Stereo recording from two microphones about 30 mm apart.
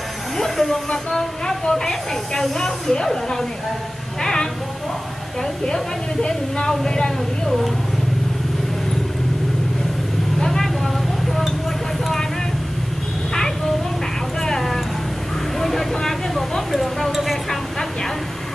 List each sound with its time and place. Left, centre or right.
0.4 s speech: centre
4.2 s speech: left
10.4 s vehicle: centre
15.6 s speech: centre